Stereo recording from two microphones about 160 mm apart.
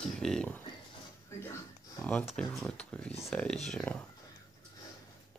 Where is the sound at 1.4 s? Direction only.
15° left (ahead or behind).